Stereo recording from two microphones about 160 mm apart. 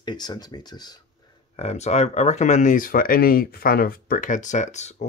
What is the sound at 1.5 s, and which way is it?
Speech, 40° left (ahead or behind).